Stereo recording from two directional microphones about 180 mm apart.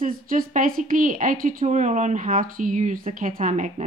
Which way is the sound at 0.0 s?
50° right (ahead or behind).